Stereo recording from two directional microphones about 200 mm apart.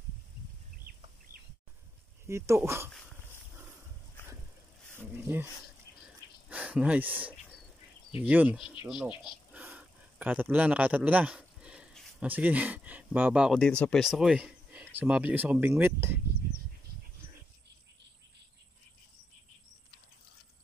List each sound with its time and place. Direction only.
0.9 s chicken: 50° right (ahead or behind)
2.2 s speech: 15° right (ahead or behind)
4.9 s speech: 10° right (ahead or behind)
6.5 s speech: 5° right (ahead or behind)